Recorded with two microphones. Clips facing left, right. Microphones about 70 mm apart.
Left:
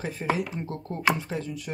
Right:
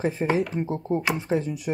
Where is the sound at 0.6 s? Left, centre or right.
Centre.